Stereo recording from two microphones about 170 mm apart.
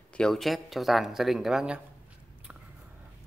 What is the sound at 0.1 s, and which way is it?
Speech, 5° left (ahead or behind).